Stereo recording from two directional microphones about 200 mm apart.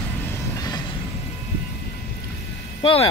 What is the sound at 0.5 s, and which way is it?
Vehicle, 20° left (ahead or behind).